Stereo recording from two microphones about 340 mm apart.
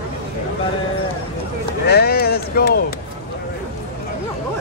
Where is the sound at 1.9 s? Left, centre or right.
Left.